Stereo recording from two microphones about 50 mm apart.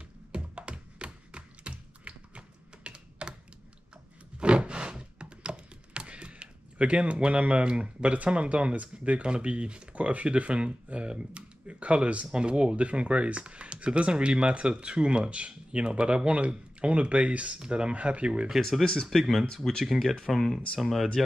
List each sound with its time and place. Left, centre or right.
0.3 s tap: right
4.4 s a sound: right
9.0 s speech: right
18.6 s speech: centre